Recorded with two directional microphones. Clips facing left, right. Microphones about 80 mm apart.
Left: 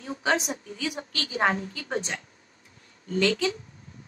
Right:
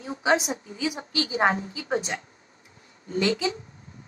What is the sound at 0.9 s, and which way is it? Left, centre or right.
Speech, right.